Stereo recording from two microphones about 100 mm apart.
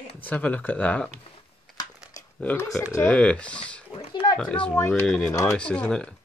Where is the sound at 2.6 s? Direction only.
30° left (ahead or behind).